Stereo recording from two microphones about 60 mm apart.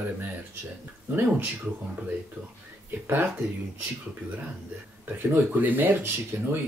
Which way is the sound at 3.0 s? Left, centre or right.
Right.